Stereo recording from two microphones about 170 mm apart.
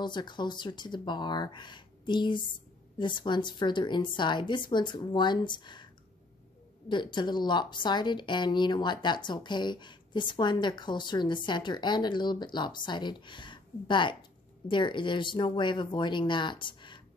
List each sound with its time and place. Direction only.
0.0 s speech: 25° left (ahead or behind)
6.9 s speech: 25° left (ahead or behind)